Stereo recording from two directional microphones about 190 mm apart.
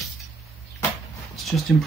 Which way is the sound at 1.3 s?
Centre (ahead or behind).